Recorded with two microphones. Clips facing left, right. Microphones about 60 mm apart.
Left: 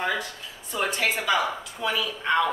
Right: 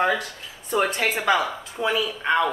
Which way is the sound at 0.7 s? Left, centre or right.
Right.